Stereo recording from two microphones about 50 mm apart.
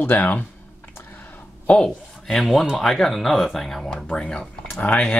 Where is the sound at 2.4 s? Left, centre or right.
Centre.